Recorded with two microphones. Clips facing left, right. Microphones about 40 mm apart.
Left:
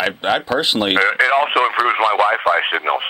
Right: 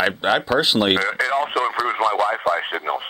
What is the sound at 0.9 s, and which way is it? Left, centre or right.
Speech, left.